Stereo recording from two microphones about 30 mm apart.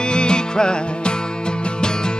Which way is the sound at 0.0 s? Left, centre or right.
Left.